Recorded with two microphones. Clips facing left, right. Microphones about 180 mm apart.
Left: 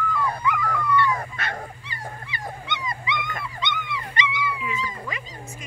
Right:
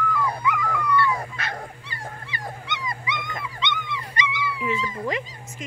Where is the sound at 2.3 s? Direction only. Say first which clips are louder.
Left 1 dB; 20° left (ahead or behind).